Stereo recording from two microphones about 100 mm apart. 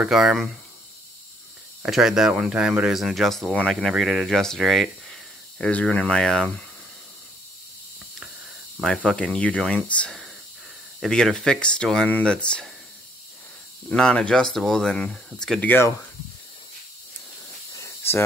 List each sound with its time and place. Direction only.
0.0 s speech: 5° right (ahead or behind)
1.9 s speech: 5° right (ahead or behind)
5.7 s speech: 15° left (ahead or behind)
8.8 s speech: 5° left (ahead or behind)
13.8 s speech: 10° left (ahead or behind)
15.6 s speech: 20° left (ahead or behind)
17.7 s snake: 30° left (ahead or behind)